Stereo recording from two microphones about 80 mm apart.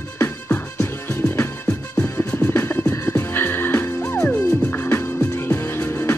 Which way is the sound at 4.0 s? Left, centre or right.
Centre.